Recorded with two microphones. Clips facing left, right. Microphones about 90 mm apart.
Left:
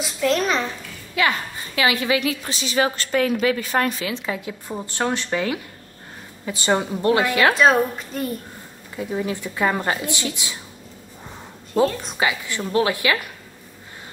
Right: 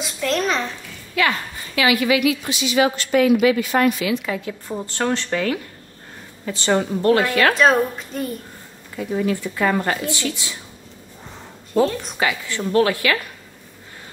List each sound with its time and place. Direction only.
0.0 s a child's voice: centre (ahead or behind)
1.2 s a woman's voice: 20° left (ahead or behind)
4.3 s a woman's voice: 15° left (ahead or behind)
8.9 s speech: 20° left (ahead or behind)
11.7 s a child's voice: centre (ahead or behind)
12.2 s a woman's voice: 15° left (ahead or behind)